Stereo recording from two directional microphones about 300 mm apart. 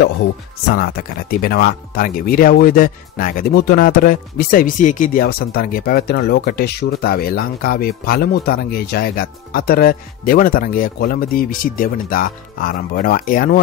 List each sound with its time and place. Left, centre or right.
0.7 s speech: left